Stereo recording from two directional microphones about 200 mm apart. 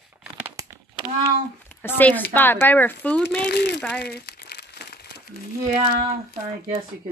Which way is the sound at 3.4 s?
55° left (ahead or behind).